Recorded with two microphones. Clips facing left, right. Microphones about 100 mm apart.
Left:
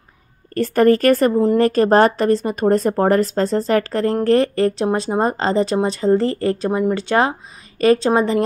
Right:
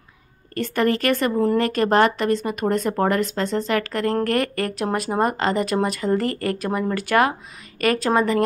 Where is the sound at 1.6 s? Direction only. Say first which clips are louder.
Left 6 dB; 35° left (ahead or behind).